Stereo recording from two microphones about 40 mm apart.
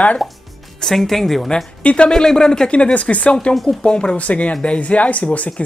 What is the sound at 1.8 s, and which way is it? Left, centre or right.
Speech, left.